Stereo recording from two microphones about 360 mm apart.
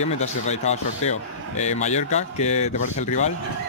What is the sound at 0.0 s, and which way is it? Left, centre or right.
Speech, centre.